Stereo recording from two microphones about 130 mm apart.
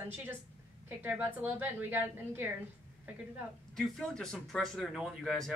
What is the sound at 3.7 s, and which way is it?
Speech, centre (ahead or behind).